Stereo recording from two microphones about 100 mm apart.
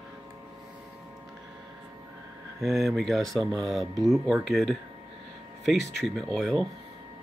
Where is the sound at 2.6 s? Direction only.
5° right (ahead or behind).